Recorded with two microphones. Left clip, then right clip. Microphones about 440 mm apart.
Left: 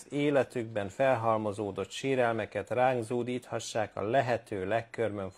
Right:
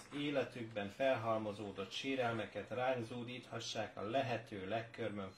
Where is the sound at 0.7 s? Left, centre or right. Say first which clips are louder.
Left 8 dB; left.